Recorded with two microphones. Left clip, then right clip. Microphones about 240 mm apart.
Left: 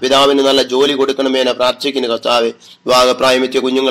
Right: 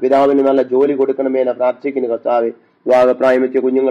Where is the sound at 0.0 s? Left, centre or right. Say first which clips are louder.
Left 1 dB; left.